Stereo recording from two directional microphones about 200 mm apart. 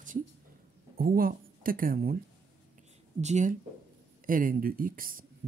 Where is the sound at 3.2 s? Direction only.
35° right (ahead or behind).